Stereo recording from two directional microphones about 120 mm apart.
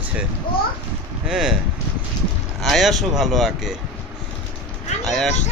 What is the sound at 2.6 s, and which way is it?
Speech, centre (ahead or behind).